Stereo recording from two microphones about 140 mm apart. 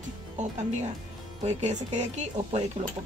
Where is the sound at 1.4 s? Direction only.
55° right (ahead or behind).